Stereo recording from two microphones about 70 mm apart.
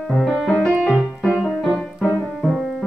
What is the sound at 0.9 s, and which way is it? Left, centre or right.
Keyboard, centre.